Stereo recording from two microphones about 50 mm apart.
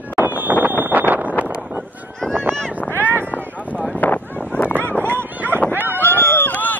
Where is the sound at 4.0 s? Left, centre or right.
Left.